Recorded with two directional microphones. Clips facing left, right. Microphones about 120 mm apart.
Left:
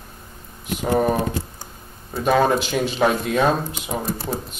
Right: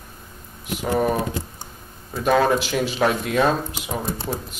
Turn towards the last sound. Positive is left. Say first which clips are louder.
# left 1 dB
turn(degrees=0)  # may be behind; listen again after turning